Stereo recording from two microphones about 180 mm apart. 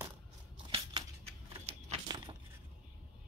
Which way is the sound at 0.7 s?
25° right (ahead or behind).